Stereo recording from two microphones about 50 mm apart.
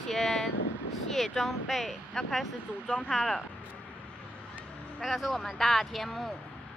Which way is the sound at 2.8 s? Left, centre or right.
Left.